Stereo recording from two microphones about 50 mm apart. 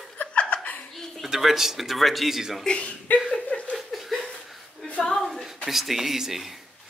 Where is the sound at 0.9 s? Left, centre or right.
Centre.